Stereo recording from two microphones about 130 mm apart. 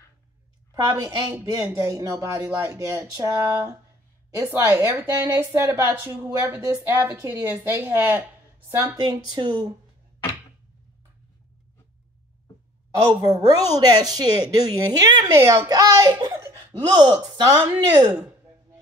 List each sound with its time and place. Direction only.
0.7 s a woman's voice: 30° right (ahead or behind)
8.7 s speech: 30° right (ahead or behind)
12.9 s a woman's voice: 35° right (ahead or behind)